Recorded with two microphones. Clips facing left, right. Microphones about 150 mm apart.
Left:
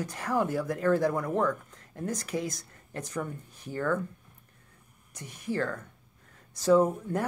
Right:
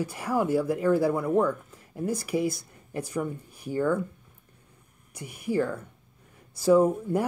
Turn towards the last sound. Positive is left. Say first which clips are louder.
# right 3 dB
turn(degrees=-10)  # may be behind; listen again after turning